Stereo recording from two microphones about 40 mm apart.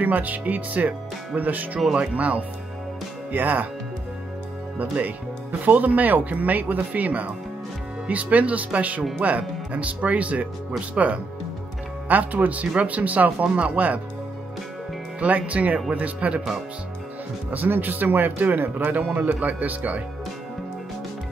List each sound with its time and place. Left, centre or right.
0.0 s speech: right
4.7 s speech: right
12.1 s speech: right
15.1 s speech: right
17.5 s speech: right